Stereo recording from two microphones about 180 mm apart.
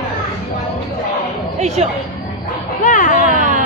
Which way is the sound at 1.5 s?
40° right (ahead or behind).